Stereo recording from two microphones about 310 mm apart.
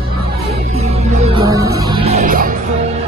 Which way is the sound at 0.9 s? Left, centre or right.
Centre.